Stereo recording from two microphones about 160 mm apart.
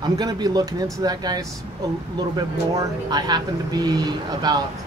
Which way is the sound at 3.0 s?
25° right (ahead or behind).